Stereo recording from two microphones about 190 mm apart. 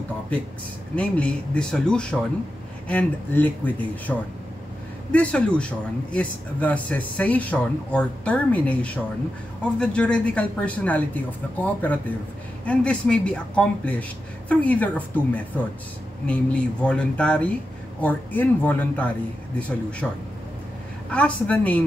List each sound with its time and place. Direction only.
0.9 s speech: 5° left (ahead or behind)